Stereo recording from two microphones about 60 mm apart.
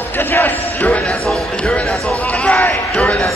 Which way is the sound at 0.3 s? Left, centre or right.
Left.